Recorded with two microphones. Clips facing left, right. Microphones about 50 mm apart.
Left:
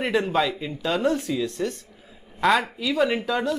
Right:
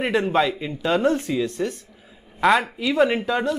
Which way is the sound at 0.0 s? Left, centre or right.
Centre.